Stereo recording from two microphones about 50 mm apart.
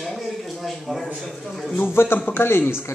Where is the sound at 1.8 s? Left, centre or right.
Left.